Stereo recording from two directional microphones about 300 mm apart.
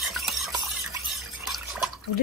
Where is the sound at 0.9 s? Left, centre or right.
Centre.